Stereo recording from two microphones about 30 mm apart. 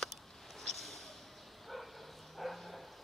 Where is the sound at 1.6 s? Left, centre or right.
Centre.